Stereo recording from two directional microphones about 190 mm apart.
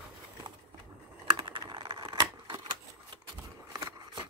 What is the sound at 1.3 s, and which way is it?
Computer keyboard, 25° right (ahead or behind).